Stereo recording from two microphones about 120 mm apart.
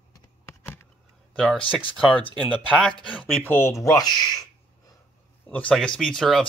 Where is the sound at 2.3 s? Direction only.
10° left (ahead or behind); by 4.9 s 35° left (ahead or behind).